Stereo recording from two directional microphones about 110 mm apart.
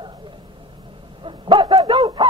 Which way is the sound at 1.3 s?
50° right (ahead or behind).